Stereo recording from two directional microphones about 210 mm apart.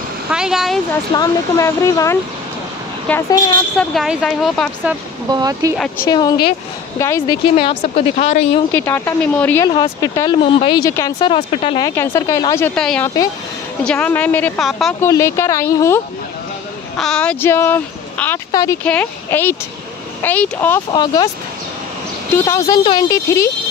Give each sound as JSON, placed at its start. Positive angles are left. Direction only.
{"t": 0.3, "sound": "speech", "side_deg": -5}
{"t": 1.1, "sound": "speech", "side_deg": 15}
{"t": 3.7, "sound": "speech", "side_deg": 0}
{"t": 5.3, "sound": "speech", "side_deg": -15}
{"t": 5.9, "sound": "speech", "side_deg": 20}
{"t": 7.5, "sound": "speech", "side_deg": 25}
{"t": 8.7, "sound": "speech", "side_deg": 10}
{"t": 11.9, "sound": "speech", "side_deg": 10}
{"t": 15.0, "sound": "speech", "side_deg": 15}
{"t": 16.9, "sound": "speech", "side_deg": 5}
{"t": 20.9, "sound": "speech", "side_deg": 20}
{"t": 22.3, "sound": "speech", "side_deg": 15}